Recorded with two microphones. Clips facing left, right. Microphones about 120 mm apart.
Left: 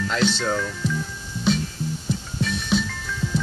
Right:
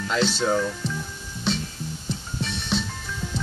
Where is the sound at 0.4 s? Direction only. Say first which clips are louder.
Right 2 dB; 15° right (ahead or behind).